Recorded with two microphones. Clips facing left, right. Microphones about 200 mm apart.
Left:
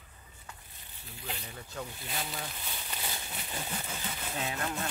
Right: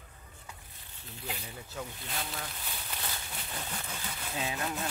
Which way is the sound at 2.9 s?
10° left (ahead or behind).